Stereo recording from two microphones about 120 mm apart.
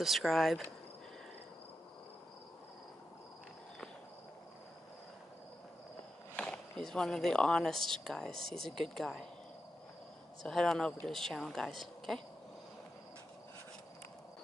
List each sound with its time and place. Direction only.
0.0 s speech: centre (ahead or behind)
6.3 s speech: 10° left (ahead or behind)
10.4 s speech: 5° left (ahead or behind)